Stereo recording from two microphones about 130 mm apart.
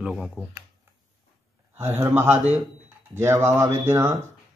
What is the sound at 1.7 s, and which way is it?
A man's voice, 20° right (ahead or behind).